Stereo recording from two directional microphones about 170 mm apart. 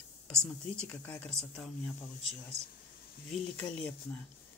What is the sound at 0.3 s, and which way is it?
Speech, 5° left (ahead or behind).